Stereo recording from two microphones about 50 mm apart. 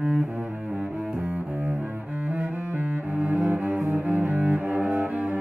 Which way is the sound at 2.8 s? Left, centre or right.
Right.